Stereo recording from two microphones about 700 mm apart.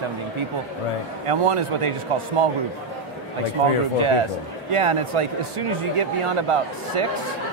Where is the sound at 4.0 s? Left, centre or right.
Right.